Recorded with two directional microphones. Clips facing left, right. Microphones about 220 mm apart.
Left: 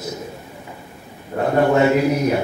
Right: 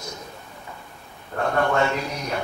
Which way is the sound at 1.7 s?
10° left (ahead or behind).